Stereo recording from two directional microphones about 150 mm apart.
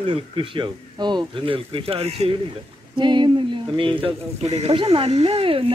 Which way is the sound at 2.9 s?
30° right (ahead or behind).